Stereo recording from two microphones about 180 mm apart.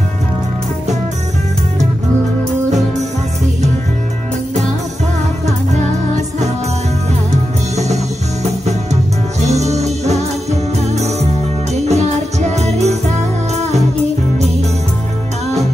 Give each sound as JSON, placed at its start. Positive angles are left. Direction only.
{"t": 9.5, "sound": "music", "side_deg": -40}